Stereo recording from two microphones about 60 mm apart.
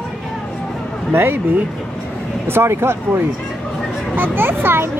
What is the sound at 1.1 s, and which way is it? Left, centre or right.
Speech, right.